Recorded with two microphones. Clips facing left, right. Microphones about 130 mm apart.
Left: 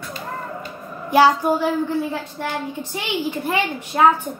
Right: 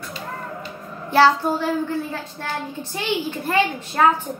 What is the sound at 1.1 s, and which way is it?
Child singing, 15° left (ahead or behind).